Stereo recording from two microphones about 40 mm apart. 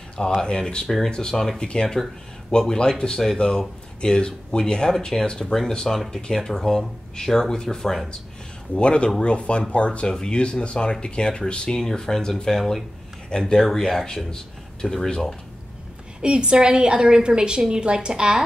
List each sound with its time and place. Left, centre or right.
0.4 s speech: left
0.8 s speech: centre
8.7 s speech: left
11.8 s speech: centre
16.2 s a woman's voice: right